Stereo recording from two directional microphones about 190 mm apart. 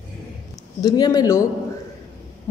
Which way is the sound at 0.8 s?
20° left (ahead or behind).